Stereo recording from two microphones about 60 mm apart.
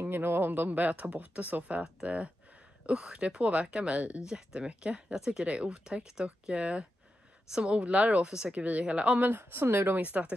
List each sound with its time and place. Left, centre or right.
0.0 s speech: right; by 9.2 s centre
9.2 s speech: right
10.1 s speech: right